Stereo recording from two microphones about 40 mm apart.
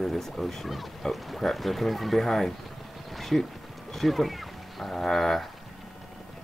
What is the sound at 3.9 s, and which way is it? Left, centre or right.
Speech, centre.